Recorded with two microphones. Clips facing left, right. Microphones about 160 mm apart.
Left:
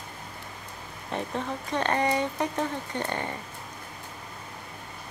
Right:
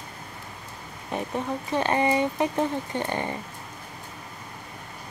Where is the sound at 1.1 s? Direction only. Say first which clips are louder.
Right 3 dB; 10° right (ahead or behind).